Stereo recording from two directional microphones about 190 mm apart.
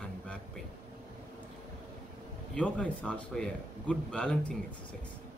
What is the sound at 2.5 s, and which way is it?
A man's voice, 5° left (ahead or behind).